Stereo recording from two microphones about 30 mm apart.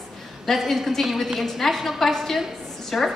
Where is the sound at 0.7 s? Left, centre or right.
Centre.